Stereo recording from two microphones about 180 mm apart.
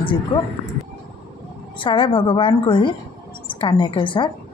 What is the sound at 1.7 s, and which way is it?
Speech, 30° left (ahead or behind).